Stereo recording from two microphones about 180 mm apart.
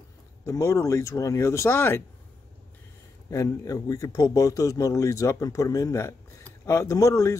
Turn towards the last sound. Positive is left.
turn(degrees=15)  # may be behind; listen again after turning